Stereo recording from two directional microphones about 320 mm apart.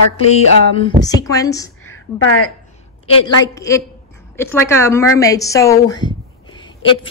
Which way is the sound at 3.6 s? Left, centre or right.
Centre.